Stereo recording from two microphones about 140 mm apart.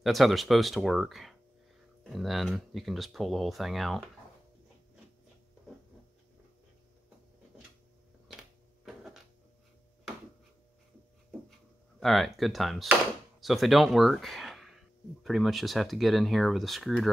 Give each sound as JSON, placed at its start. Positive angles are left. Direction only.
{"t": 0.0, "sound": "speech", "side_deg": 0}
{"t": 8.8, "sound": "a sound", "side_deg": 0}
{"t": 12.0, "sound": "speech", "side_deg": 0}